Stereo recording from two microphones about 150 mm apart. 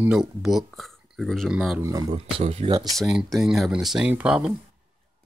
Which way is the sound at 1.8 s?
25° right (ahead or behind).